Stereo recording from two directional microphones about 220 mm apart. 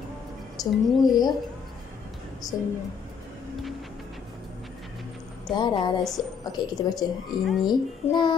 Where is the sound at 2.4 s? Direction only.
15° left (ahead or behind).